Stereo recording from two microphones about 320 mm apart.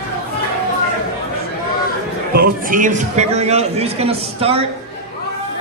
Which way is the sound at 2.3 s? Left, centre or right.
Right.